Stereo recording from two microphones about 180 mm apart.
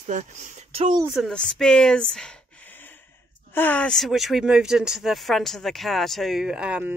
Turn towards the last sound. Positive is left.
turn(degrees=-5)  # may be behind; listen again after turning